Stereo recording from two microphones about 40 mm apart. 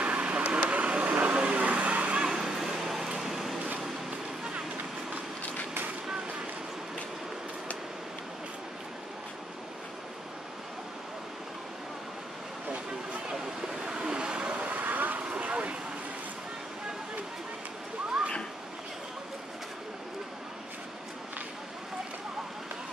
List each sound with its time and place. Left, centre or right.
0.0 s vehicle: right
2.1 s vehicle: centre
13.3 s vehicle: centre; by 15.1 s right
15.1 s vehicle: right